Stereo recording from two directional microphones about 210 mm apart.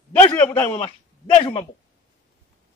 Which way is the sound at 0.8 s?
25° left (ahead or behind).